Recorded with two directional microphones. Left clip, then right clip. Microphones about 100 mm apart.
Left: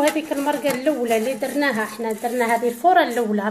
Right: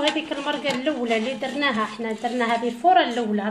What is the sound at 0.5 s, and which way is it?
Speech, 55° left (ahead or behind).